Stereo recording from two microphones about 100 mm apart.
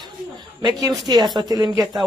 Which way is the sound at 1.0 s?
45° right (ahead or behind).